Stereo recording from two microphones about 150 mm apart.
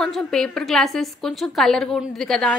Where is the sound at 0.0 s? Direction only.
5° left (ahead or behind).